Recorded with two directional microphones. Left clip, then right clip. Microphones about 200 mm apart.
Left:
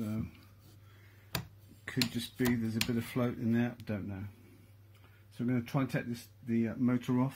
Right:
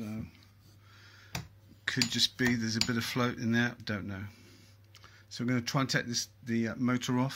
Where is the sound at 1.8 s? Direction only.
10° right (ahead or behind).